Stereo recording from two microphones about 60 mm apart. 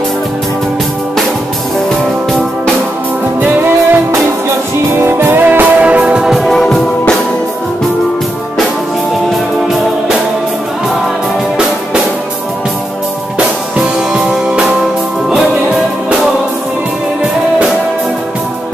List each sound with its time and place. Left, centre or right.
3.3 s music: right
5.0 s music: right
6.4 s music: centre
13.7 s music: centre